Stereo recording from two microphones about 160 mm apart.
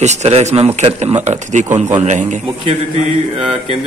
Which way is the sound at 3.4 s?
35° right (ahead or behind).